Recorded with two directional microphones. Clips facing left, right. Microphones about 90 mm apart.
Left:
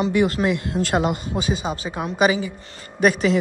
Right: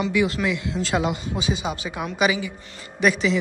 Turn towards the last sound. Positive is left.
turn(degrees=45)  # may be behind; listen again after turning